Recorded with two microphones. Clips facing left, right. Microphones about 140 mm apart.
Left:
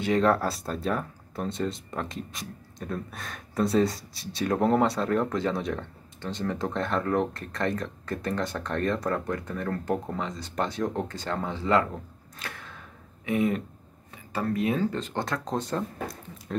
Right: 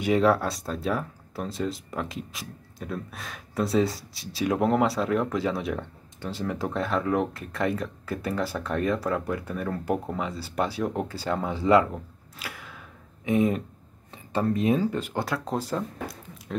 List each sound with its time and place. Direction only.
0.0 s speech: 5° right (ahead or behind)
13.2 s speech: 20° right (ahead or behind)
14.8 s speech: 10° right (ahead or behind)